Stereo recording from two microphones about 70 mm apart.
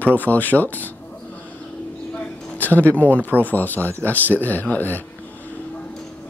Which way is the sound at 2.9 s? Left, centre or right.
Left.